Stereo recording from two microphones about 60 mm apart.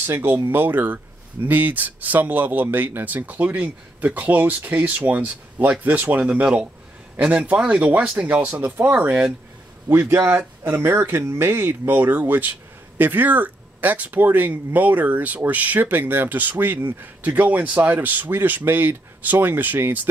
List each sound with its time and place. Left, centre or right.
0.0 s speech: right
6.4 s speech: centre
8.5 s speech: right
9.8 s speech: right